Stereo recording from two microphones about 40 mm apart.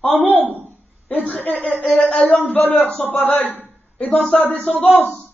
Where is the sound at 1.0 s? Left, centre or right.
Left.